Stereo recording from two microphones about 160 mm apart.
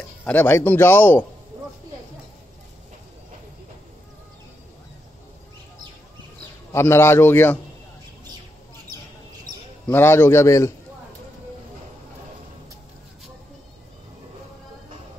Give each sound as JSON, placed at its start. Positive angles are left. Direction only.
{"t": 0.2, "sound": "a man's voice", "side_deg": 10}
{"t": 6.7, "sound": "a man's voice", "side_deg": 15}
{"t": 9.8, "sound": "a man's voice", "side_deg": 15}